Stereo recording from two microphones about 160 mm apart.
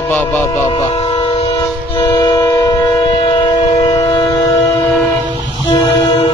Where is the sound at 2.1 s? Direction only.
25° left (ahead or behind).